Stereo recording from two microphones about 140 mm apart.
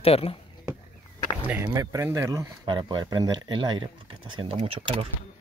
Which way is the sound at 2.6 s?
35° right (ahead or behind).